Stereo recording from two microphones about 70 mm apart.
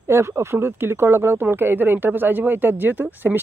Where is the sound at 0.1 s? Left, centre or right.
Right.